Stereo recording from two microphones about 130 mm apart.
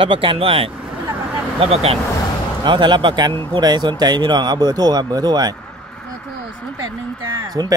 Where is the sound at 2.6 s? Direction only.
35° right (ahead or behind).